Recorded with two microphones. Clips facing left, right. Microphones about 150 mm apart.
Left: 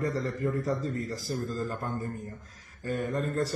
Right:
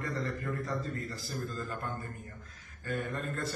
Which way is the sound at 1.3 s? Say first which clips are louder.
Left 6 dB; 40° left (ahead or behind).